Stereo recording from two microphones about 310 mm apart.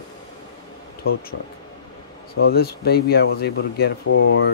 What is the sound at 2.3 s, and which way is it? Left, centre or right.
Speech, left.